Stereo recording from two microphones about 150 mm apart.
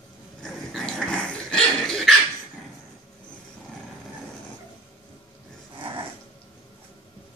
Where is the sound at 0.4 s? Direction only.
5° left (ahead or behind).